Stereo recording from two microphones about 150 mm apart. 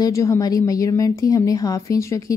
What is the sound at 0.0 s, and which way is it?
A woman's voice, 20° left (ahead or behind).